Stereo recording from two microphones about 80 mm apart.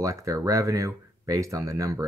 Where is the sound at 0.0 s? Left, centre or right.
Right.